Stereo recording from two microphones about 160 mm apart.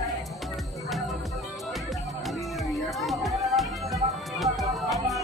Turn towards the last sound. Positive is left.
turn(degrees=0)  # may be behind; listen again after turning